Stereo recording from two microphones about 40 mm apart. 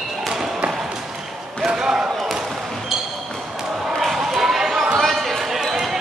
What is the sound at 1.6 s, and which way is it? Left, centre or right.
Basketball bounce, centre.